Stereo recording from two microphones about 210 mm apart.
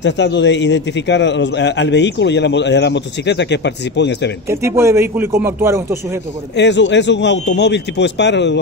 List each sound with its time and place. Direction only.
0.0 s a man's voice: 60° left (ahead or behind)
4.5 s a man's voice: 15° right (ahead or behind)
6.5 s a man's voice: 55° left (ahead or behind)